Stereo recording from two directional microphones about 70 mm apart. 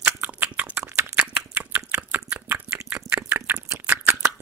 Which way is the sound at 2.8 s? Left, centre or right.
Right.